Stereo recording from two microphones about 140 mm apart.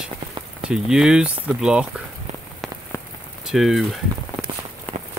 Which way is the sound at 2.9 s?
20° left (ahead or behind).